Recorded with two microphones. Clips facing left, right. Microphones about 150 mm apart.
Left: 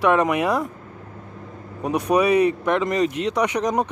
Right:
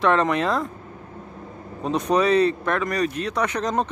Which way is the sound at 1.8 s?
10° left (ahead or behind).